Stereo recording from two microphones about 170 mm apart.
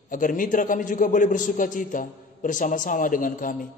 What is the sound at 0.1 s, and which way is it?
A man's voice, 50° left (ahead or behind).